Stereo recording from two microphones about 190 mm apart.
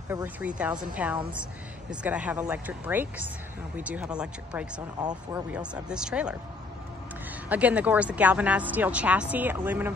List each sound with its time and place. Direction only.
0.1 s speech: 5° right (ahead or behind)
7.4 s speech: 10° right (ahead or behind)